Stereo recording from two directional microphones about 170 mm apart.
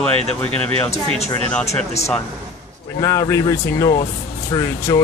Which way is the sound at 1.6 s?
40° left (ahead or behind).